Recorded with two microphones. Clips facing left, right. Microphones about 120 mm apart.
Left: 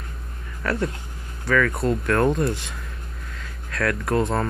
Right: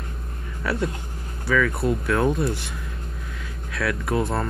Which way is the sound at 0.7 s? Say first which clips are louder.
Left 1 dB; 10° right (ahead or behind).